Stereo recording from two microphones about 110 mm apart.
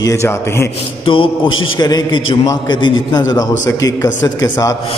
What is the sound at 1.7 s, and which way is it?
A man's voice, 35° left (ahead or behind).